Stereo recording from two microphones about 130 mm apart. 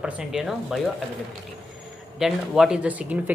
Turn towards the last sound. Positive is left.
turn(degrees=-10)  # may be behind; listen again after turning